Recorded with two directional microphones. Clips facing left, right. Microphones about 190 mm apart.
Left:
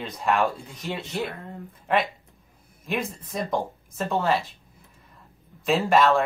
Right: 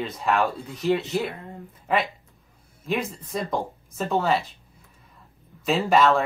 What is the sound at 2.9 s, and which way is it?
Speech, centre (ahead or behind).